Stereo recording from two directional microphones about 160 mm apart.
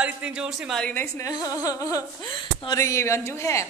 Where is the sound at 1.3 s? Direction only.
20° left (ahead or behind).